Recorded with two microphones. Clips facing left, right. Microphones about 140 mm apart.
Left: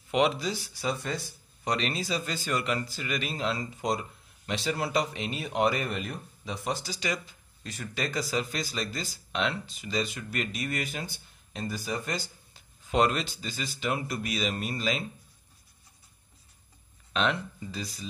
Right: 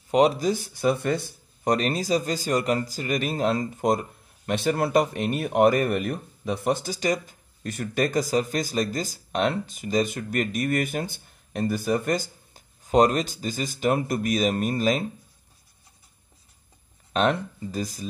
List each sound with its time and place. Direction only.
0.1 s speech: 40° right (ahead or behind)
17.1 s speech: 45° right (ahead or behind)